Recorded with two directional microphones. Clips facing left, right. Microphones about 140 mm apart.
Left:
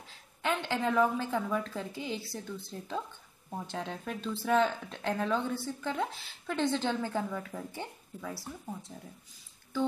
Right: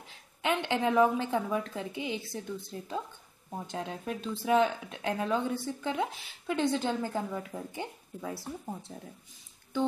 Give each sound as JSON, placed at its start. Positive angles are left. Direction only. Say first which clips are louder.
{"t": 0.4, "sound": "a woman's voice", "louder": "right 2 dB", "side_deg": -20}